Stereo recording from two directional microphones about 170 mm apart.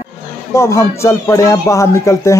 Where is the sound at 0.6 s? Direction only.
20° left (ahead or behind).